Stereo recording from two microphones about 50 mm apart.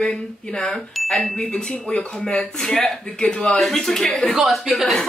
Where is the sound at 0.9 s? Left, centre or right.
Centre.